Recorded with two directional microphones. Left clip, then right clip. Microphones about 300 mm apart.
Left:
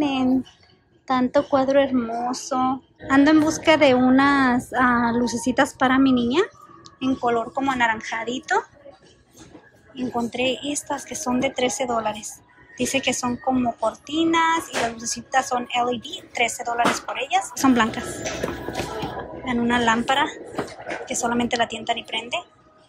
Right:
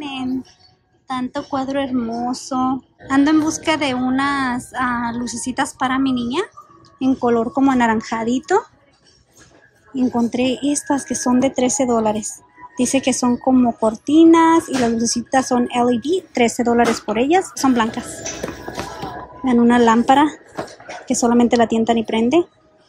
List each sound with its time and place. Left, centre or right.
0.0 s a sound: centre
1.0 s speech: centre
9.9 s speech: centre
17.6 s speech: centre
19.4 s speech: centre